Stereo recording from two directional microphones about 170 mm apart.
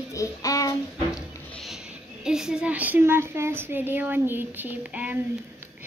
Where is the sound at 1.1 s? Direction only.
Centre (ahead or behind).